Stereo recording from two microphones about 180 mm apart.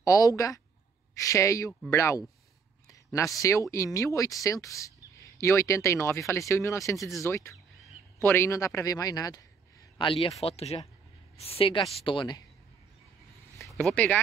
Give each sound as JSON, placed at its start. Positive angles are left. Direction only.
{"t": 0.0, "sound": "speech", "side_deg": 20}
{"t": 2.9, "sound": "a sound", "side_deg": 20}
{"t": 3.3, "sound": "a woman's voice", "side_deg": 15}
{"t": 13.7, "sound": "speech", "side_deg": 0}